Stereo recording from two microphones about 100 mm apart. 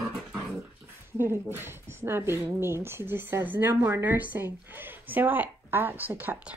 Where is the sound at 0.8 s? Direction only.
20° right (ahead or behind).